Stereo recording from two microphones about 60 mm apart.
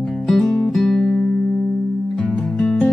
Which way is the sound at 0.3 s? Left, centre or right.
Centre.